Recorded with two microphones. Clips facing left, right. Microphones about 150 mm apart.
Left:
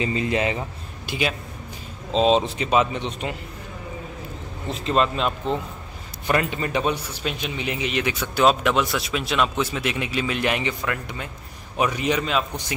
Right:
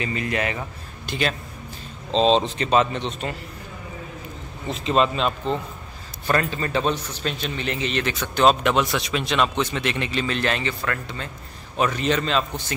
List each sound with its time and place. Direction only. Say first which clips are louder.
0.0 s speech: left 3 dB; 25° left (ahead or behind)
1.0 s a man's voice: even; 10° left (ahead or behind)
4.8 s speech: right 1 dB; centre (ahead or behind)
6.2 s speech: even; 15° left (ahead or behind)